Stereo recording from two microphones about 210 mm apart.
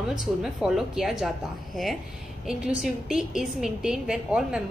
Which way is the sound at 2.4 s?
5° right (ahead or behind).